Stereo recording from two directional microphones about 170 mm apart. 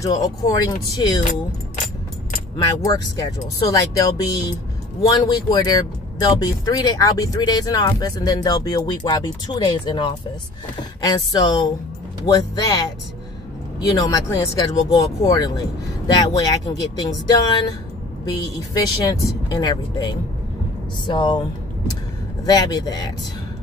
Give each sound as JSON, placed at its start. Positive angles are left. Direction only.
{"t": 0.0, "sound": "speech", "side_deg": 20}
{"t": 2.5, "sound": "speech", "side_deg": 20}
{"t": 22.5, "sound": "speech", "side_deg": 25}